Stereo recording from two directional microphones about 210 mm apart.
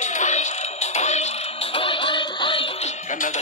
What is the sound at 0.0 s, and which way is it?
Music, 35° left (ahead or behind).